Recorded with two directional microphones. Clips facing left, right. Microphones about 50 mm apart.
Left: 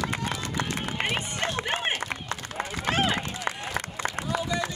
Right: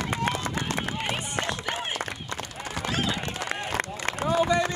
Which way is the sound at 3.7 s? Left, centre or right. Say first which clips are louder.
Right 1 dB; right.